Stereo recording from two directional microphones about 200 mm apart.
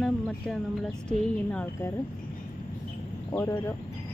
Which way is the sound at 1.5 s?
5° left (ahead or behind).